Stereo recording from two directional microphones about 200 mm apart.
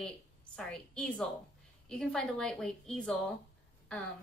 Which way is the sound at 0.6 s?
5° left (ahead or behind).